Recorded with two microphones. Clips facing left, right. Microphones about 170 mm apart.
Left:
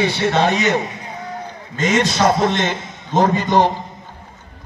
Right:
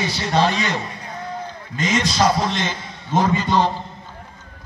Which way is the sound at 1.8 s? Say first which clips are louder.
Left 3 dB; 50° left (ahead or behind).